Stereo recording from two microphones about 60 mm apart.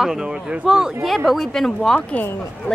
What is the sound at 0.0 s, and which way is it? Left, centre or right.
A woman's voice, centre.